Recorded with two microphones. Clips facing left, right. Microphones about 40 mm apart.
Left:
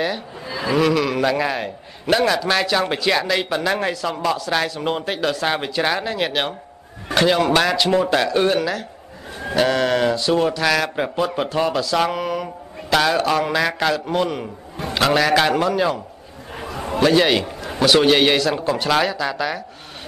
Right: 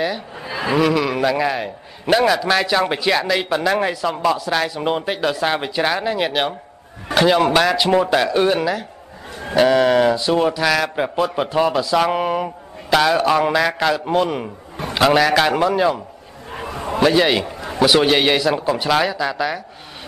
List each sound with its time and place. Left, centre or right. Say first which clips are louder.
0.5 s a sound: right 1 dB; right
0.7 s a man's voice: even; centre
4.6 s a man's voice: right 2 dB; centre
12.1 s speech: right 4 dB; right
12.9 s a man's voice: right 2 dB; centre
13.9 s a man's voice: right 2 dB; centre
16.5 s a sound: right 2 dB; right
17.0 s a man's voice: even; centre